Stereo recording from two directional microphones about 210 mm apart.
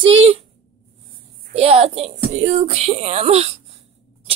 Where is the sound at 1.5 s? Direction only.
30° right (ahead or behind).